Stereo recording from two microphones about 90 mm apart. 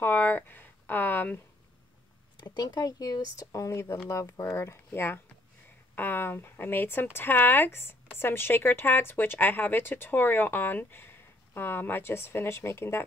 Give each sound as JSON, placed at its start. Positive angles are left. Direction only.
{"t": 0.0, "sound": "speech", "side_deg": 20}
{"t": 2.3, "sound": "speech", "side_deg": 55}